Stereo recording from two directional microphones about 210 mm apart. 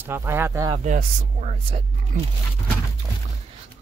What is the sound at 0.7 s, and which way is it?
Speech, 35° right (ahead or behind).